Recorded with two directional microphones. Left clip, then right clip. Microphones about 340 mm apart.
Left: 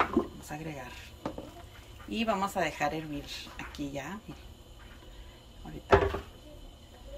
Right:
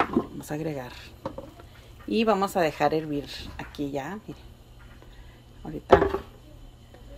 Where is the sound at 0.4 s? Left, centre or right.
Right.